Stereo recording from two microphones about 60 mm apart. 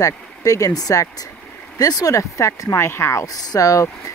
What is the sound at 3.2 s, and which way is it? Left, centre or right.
Speech, left.